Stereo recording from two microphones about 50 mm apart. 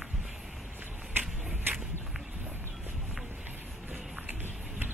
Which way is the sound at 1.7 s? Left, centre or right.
Right.